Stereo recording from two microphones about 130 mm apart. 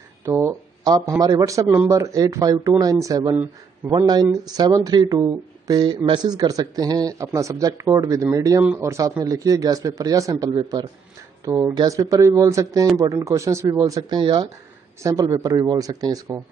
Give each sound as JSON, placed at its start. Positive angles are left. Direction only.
{"t": 0.2, "sound": "speech", "side_deg": -20}
{"t": 15.0, "sound": "speech", "side_deg": -25}